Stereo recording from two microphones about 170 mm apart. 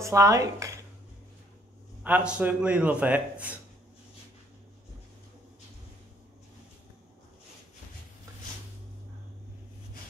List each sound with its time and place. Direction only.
0.0 s speech: 20° right (ahead or behind)
2.0 s a man's voice: 10° right (ahead or behind)